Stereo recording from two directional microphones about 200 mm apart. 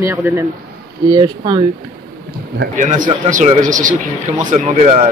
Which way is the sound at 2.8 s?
40° right (ahead or behind).